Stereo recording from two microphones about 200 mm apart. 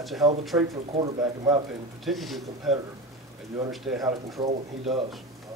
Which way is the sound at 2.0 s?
Centre (ahead or behind).